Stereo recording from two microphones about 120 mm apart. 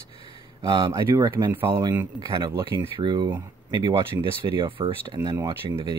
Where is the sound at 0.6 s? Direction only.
35° right (ahead or behind).